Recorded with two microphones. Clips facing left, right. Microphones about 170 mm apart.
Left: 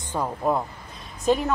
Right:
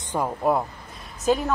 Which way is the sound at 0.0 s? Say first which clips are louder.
Right 2 dB; 10° right (ahead or behind).